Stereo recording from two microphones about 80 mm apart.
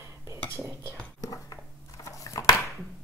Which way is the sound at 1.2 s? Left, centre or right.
Left.